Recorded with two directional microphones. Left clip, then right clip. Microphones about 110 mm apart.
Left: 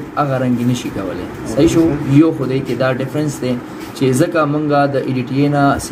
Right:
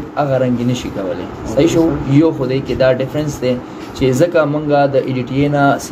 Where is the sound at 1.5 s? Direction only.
25° right (ahead or behind).